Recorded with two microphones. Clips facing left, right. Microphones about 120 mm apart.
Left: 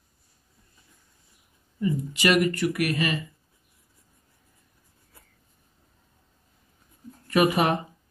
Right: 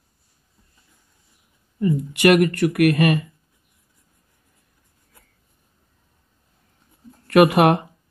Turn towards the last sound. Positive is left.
turn(degrees=-65)  # may be behind; listen again after turning